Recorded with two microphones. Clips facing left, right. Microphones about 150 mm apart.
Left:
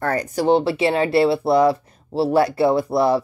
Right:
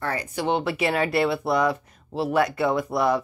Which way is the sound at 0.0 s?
45° left (ahead or behind).